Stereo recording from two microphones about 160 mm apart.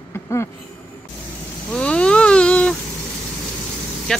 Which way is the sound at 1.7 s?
5° left (ahead or behind).